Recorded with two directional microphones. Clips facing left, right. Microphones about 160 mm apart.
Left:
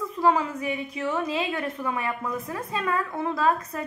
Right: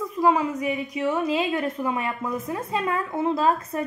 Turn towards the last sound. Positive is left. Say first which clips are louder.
# right 2 dB
turn(degrees=-25)  # may be behind; listen again after turning